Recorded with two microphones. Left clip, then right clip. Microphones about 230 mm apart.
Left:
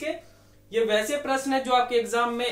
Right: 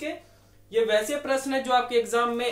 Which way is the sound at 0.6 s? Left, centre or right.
Right.